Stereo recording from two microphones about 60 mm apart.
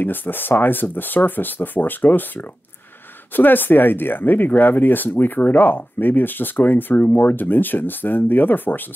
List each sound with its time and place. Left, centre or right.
0.0 s speech: left